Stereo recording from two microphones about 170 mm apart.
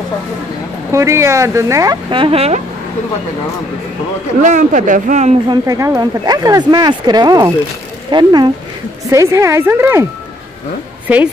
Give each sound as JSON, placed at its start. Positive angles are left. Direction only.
{"t": 0.9, "sound": "speech", "side_deg": -15}
{"t": 4.4, "sound": "speech", "side_deg": -45}
{"t": 5.5, "sound": "speech", "side_deg": -20}